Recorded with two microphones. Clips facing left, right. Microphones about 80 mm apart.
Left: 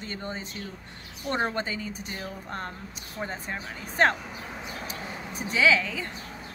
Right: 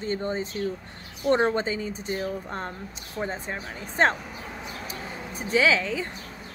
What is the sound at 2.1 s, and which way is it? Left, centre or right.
Speech, centre.